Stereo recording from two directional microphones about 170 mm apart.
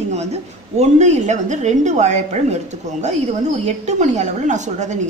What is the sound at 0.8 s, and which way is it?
A woman's voice, 40° right (ahead or behind).